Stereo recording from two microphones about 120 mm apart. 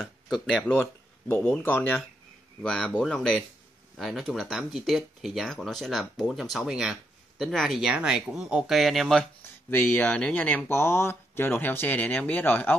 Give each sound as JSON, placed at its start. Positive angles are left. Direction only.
{"t": 0.0, "sound": "speech", "side_deg": 0}
{"t": 1.6, "sound": "speech", "side_deg": 15}
{"t": 9.7, "sound": "speech", "side_deg": 15}